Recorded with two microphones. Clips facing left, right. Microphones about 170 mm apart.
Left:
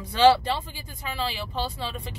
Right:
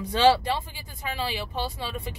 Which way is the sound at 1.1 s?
15° right (ahead or behind).